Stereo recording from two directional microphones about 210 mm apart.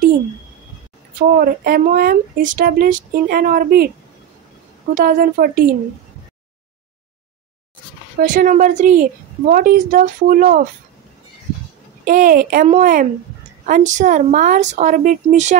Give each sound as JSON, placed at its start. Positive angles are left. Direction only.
{"t": 1.3, "sound": "speech", "side_deg": -45}
{"t": 4.9, "sound": "speech", "side_deg": -40}
{"t": 8.2, "sound": "a woman's voice", "side_deg": -40}
{"t": 12.0, "sound": "a woman's voice", "side_deg": -40}